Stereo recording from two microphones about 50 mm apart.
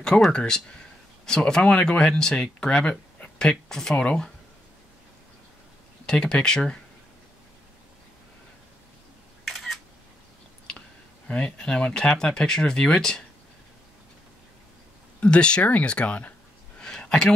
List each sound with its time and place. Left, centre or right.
0.3 s speech: centre
3.3 s speech: centre
3.9 s speech: left
6.0 s speech: centre
9.4 s camera: centre
11.2 s speech: centre
15.2 s speech: left
17.0 s a sound: centre